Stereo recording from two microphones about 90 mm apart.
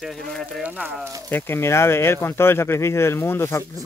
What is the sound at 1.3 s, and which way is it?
Speech, 25° left (ahead or behind).